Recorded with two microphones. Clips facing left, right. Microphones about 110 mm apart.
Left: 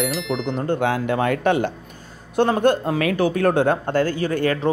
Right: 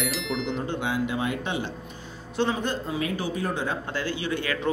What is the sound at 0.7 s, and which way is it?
Speech, 50° left (ahead or behind).